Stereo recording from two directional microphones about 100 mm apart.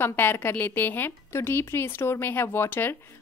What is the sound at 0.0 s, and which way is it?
A woman's voice, 20° left (ahead or behind).